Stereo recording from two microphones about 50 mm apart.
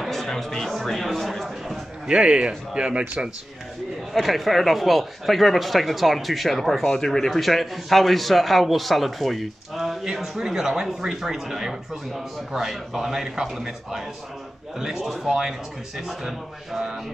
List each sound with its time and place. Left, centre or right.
0.0 s speech: centre
2.0 s a man's voice: right
4.1 s speech: centre